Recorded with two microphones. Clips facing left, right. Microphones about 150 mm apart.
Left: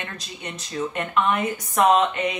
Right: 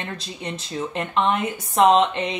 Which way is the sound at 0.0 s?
30° right (ahead or behind).